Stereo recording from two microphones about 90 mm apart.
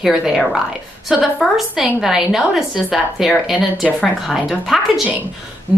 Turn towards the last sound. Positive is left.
turn(degrees=-5)  # may be behind; listen again after turning